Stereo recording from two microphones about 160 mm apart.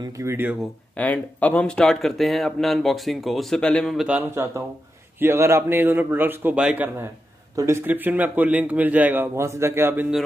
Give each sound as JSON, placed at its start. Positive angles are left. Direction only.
{"t": 0.0, "sound": "a man's voice", "side_deg": -20}
{"t": 0.9, "sound": "speech", "side_deg": 10}
{"t": 5.2, "sound": "a man's voice", "side_deg": -15}